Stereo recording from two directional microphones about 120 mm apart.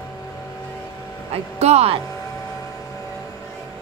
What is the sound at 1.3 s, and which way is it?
Speech, 60° right (ahead or behind).